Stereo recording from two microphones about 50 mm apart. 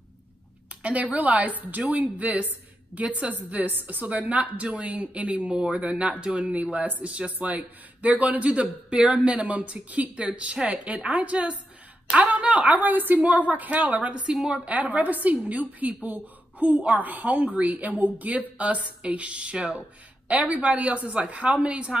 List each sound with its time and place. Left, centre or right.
0.8 s a woman's voice: right
14.2 s a woman's voice: centre
14.6 s a woman's voice: right